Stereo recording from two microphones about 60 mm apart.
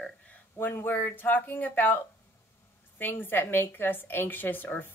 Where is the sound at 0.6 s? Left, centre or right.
Left.